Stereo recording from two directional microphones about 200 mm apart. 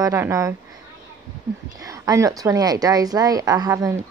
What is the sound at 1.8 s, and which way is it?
A woman's voice, 15° right (ahead or behind).